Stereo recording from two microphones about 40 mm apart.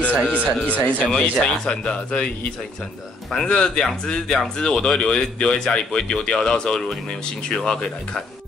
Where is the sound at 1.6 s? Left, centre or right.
Left.